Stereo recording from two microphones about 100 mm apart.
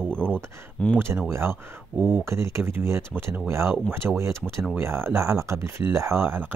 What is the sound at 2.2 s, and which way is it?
Speech, 25° right (ahead or behind).